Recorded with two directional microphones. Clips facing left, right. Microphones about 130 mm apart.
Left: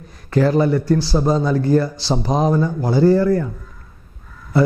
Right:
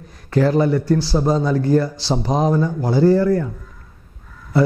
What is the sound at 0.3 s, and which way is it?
Speech, 10° left (ahead or behind).